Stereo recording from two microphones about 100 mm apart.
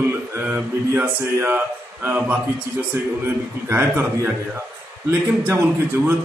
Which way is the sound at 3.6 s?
25° right (ahead or behind).